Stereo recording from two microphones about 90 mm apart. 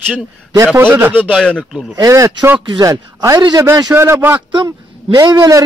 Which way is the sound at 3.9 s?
30° right (ahead or behind).